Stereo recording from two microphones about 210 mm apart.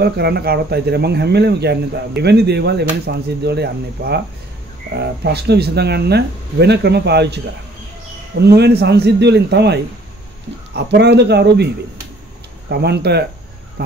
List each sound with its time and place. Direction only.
0.0 s speech: 50° right (ahead or behind)